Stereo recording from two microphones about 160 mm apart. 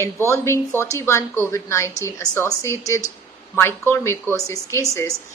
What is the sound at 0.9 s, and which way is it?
A woman's voice, 15° left (ahead or behind).